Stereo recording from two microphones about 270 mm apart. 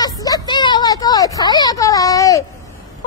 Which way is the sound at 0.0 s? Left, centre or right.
Centre.